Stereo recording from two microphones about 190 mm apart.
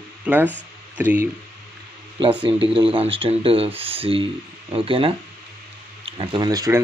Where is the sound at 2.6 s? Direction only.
30° right (ahead or behind).